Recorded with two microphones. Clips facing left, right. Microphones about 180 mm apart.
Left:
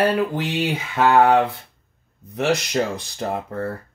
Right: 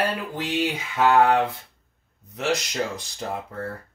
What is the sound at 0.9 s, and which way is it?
Speech, 65° left (ahead or behind).